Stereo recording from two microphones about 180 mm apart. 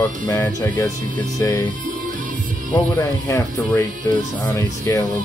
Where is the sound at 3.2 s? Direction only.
10° left (ahead or behind).